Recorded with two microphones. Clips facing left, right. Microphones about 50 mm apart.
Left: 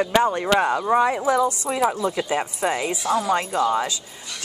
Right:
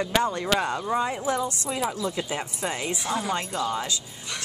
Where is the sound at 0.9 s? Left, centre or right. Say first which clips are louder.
Left 7 dB; left.